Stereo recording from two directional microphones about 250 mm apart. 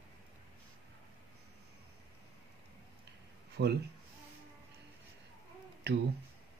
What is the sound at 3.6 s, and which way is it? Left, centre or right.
Speech, right.